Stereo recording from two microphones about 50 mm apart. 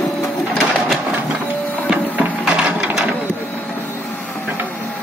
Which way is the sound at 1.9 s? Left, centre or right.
Right.